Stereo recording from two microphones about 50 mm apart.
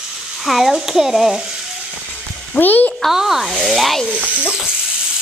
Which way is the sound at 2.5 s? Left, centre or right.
Left.